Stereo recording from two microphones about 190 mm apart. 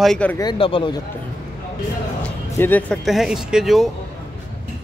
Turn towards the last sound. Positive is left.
turn(degrees=0)  # may be behind; listen again after turning